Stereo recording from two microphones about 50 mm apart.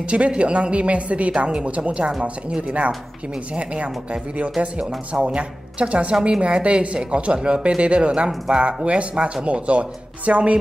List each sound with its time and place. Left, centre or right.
0.0 s speech: right
3.5 s speech: right